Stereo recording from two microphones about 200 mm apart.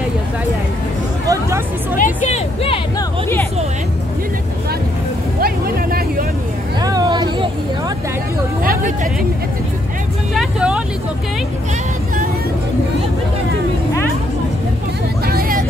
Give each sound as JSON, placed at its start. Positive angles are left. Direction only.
{"t": 1.2, "sound": "hubbub", "side_deg": -15}
{"t": 2.0, "sound": "speech", "side_deg": 35}
{"t": 3.0, "sound": "speech", "side_deg": 10}
{"t": 5.4, "sound": "music", "side_deg": -45}
{"t": 6.8, "sound": "a sound", "side_deg": -20}
{"t": 10.3, "sound": "speech", "side_deg": -5}
{"t": 15.2, "sound": "vehicle", "side_deg": -45}